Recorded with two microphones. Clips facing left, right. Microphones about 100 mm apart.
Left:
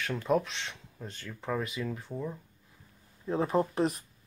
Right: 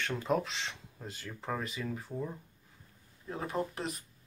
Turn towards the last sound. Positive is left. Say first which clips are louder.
# left 8 dB
turn(degrees=35)  # may be behind; listen again after turning